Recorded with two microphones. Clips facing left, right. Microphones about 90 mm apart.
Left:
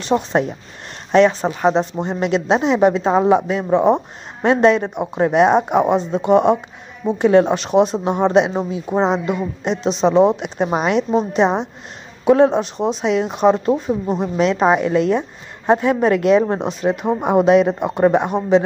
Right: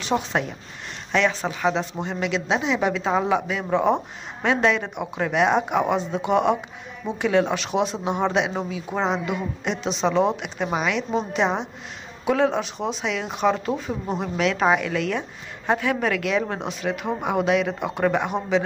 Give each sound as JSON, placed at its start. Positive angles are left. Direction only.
{"t": 0.3, "sound": "a woman's voice", "side_deg": 35}